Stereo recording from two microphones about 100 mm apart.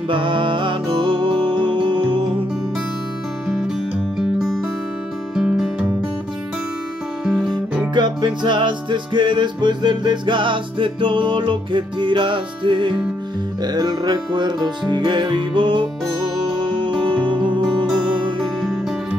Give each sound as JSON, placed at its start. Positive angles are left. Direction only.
{"t": 0.1, "sound": "music", "side_deg": -55}
{"t": 3.4, "sound": "music", "side_deg": -5}
{"t": 7.2, "sound": "guitar", "side_deg": 0}
{"t": 7.9, "sound": "music", "side_deg": -50}
{"t": 13.6, "sound": "music", "side_deg": -45}
{"t": 18.4, "sound": "music", "side_deg": 0}